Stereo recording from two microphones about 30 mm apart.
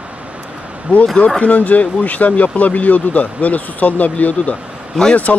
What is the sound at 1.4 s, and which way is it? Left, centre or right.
Speech, left.